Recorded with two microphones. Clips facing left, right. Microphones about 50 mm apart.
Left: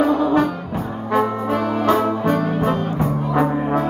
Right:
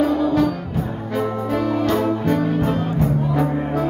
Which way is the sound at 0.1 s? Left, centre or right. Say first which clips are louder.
Left 1 dB; left.